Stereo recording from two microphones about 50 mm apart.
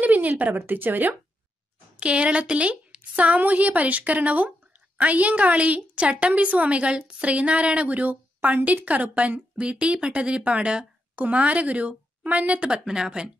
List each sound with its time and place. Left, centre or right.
0.0 s a sound: right
0.6 s speech: right
2.0 s speech: right
3.0 s speech: right; by 13.3 s centre